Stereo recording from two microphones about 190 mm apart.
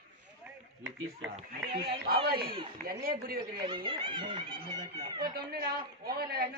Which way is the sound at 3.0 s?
50° right (ahead or behind).